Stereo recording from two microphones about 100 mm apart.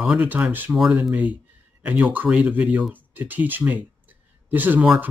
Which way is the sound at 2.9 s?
15° right (ahead or behind).